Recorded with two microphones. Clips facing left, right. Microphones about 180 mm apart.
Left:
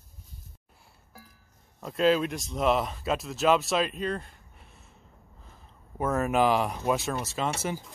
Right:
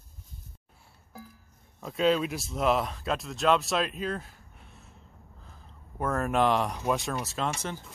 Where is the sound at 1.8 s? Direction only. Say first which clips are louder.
Left 2 dB; centre (ahead or behind).